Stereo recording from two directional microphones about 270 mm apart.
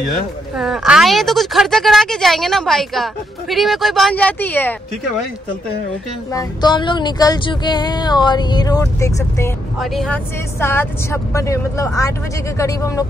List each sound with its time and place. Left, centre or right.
0.6 s speech: centre
6.3 s speech: centre
9.8 s speech: centre